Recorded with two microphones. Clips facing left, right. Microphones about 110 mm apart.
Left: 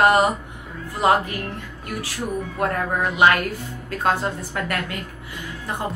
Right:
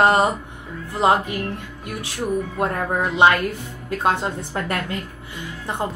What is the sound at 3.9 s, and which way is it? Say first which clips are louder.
A woman's voice: right 1 dB; 20° right (ahead or behind).